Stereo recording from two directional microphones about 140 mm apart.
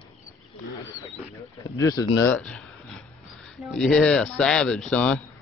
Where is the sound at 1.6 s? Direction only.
25° left (ahead or behind).